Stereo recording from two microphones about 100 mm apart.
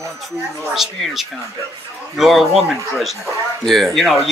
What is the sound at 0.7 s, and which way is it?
Speech, centre (ahead or behind).